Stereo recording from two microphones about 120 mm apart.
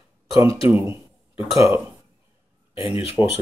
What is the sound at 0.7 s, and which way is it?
Speech, 20° right (ahead or behind).